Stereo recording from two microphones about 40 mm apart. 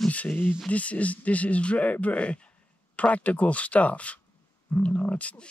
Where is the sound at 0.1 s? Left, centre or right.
Left.